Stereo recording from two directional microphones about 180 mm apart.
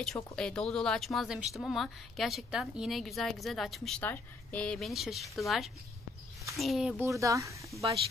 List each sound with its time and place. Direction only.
0.0 s a woman's voice: 5° left (ahead or behind)
7.0 s speech: 15° right (ahead or behind)